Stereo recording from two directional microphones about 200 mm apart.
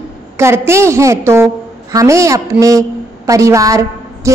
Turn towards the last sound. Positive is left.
turn(degrees=-15)  # may be behind; listen again after turning